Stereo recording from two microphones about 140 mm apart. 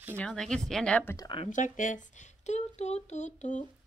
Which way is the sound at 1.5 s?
65° left (ahead or behind).